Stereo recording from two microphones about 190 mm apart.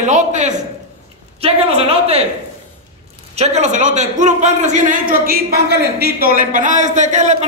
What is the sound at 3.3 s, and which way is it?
A man's voice, 35° right (ahead or behind).